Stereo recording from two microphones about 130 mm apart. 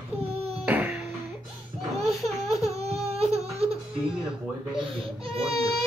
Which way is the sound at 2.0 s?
25° left (ahead or behind).